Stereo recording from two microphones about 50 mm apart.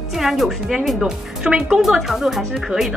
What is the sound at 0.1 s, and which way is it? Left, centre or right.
Speech, centre.